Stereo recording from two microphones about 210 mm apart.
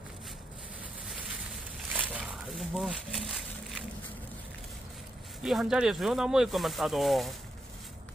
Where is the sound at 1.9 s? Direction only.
5° right (ahead or behind).